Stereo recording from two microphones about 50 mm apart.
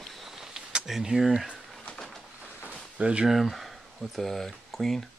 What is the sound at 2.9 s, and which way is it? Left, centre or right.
Speech, centre.